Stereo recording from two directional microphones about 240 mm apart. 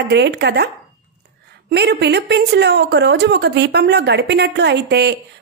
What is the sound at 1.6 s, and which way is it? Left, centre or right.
Speech, right.